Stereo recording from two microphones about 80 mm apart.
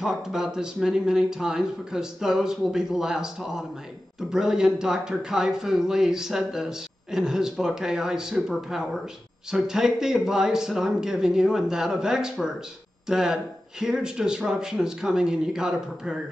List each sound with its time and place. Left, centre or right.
0.0 s speech: centre